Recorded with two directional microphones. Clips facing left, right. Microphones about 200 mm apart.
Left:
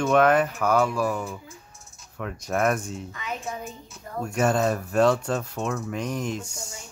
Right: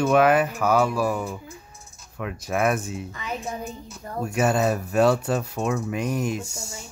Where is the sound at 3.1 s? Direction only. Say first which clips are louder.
Right 1 dB; 35° right (ahead or behind).